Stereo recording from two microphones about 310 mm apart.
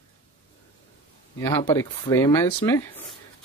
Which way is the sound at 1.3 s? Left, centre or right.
Centre.